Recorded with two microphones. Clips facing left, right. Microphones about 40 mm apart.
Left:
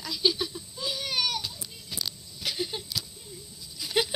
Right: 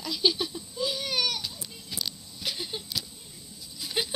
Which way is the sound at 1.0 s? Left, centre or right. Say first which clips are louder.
Even; centre.